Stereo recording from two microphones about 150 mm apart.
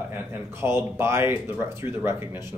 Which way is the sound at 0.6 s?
15° right (ahead or behind).